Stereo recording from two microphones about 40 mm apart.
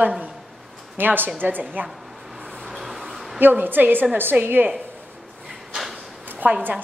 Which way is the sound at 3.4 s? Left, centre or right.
Right.